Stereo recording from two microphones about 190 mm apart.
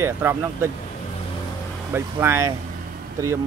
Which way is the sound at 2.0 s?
15° right (ahead or behind).